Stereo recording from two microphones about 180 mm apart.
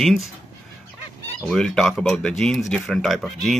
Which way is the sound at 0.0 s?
Centre (ahead or behind).